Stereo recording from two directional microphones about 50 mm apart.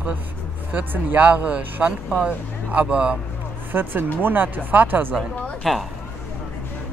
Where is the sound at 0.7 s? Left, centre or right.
Right.